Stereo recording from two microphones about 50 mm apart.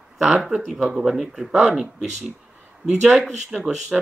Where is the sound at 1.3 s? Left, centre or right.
Centre.